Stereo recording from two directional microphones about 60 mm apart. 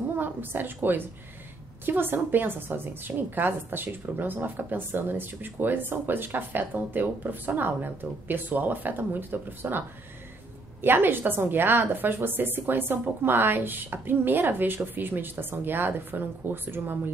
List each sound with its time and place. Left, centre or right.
0.2 s a woman's voice: right